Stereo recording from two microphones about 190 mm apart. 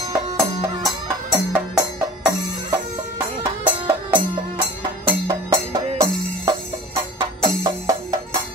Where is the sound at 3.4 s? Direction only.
10° right (ahead or behind).